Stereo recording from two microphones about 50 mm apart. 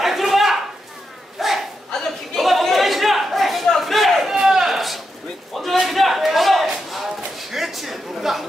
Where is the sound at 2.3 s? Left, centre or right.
Centre.